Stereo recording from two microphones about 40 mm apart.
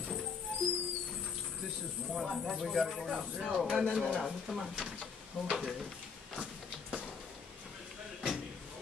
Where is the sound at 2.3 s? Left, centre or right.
Centre.